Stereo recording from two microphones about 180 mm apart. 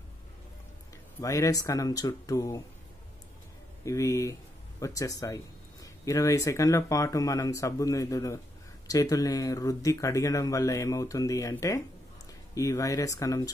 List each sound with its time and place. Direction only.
1.2 s speech: 15° left (ahead or behind)
3.8 s speech: 15° left (ahead or behind)